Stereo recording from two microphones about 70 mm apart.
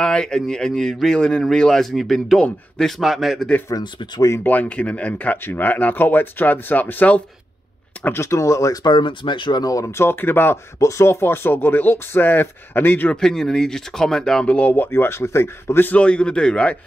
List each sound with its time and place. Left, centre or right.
0.0 s a man's voice: centre
3.7 s speech: left
4.4 s speech: left
8.0 s speech: left
9.5 s speech: left
9.8 s speech: left
10.8 s speech: left
13.1 s speech: centre; by 15.9 s left
15.9 s speech: centre